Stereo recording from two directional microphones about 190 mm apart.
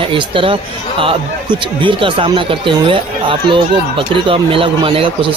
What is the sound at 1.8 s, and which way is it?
Speech, 25° right (ahead or behind).